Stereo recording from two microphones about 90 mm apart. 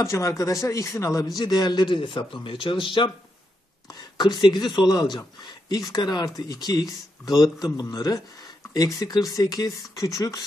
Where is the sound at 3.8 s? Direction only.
55° left (ahead or behind).